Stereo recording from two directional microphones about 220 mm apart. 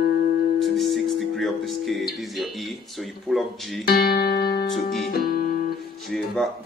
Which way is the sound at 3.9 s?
45° left (ahead or behind).